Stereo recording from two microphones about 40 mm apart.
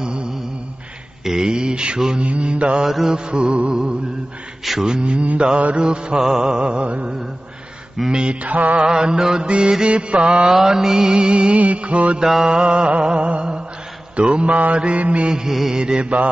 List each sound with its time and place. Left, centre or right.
0.0 s mantra: right
2.8 s music: centre
3.3 s mantra: right
8.1 s mantra: right
8.4 s mantra: right
8.8 s mantra: centre
10.5 s mantra: centre; by 12.2 s right
12.2 s music: centre
12.4 s mantra: right
15.2 s music: centre
15.7 s mantra: right